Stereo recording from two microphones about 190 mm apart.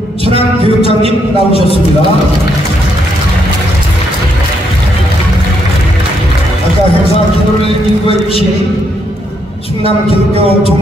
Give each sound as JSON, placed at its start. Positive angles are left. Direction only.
{"t": 0.8, "sound": "a man's voice", "side_deg": 30}
{"t": 8.1, "sound": "a man's voice", "side_deg": 30}
{"t": 9.8, "sound": "a man's voice", "side_deg": 30}